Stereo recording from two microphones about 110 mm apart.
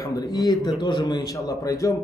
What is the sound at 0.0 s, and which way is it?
A man's voice, 35° left (ahead or behind).